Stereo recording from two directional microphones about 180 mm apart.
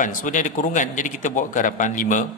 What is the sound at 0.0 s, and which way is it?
A man's voice, 45° left (ahead or behind).